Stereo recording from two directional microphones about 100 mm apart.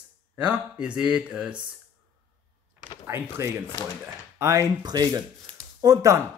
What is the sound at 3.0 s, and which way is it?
Speech, 25° right (ahead or behind).